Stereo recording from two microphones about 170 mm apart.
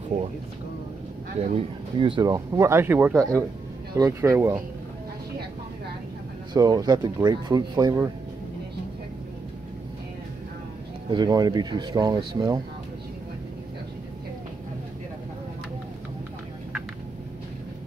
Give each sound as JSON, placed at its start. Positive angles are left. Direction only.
{"t": 1.5, "sound": "speech", "side_deg": -30}
{"t": 6.5, "sound": "speech", "side_deg": -25}
{"t": 11.1, "sound": "speech", "side_deg": -25}